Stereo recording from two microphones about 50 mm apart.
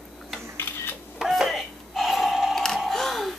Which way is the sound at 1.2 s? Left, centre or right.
Centre.